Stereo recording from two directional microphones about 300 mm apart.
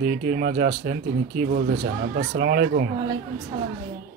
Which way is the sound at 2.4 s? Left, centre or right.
Right.